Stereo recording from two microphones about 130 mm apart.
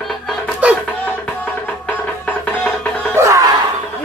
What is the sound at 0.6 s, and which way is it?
Music, 10° right (ahead or behind).